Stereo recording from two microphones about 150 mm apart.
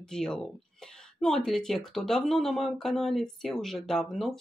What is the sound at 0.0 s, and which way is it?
Speech, 5° left (ahead or behind).